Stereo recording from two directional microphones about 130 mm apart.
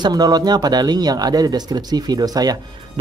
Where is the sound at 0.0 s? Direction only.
30° right (ahead or behind).